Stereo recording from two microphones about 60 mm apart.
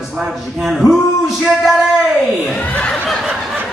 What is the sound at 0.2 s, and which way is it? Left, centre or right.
Speech, centre.